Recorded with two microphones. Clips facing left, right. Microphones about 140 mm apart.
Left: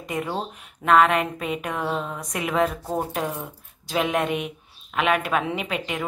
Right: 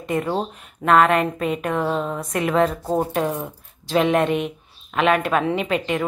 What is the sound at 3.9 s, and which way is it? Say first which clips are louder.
A woman's voice: right 5 dB; 5° left (ahead or behind).